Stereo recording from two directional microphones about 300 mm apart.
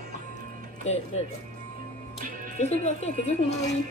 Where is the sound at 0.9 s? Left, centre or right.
Left.